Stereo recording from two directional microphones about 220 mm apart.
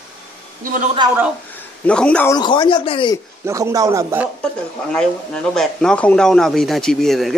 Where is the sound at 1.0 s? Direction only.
20° right (ahead or behind).